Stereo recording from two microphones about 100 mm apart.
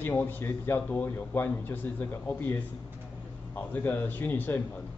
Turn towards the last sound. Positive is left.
turn(degrees=20)  # may be behind; listen again after turning